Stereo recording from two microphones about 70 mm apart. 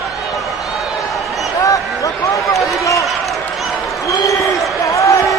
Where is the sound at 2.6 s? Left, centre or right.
Left.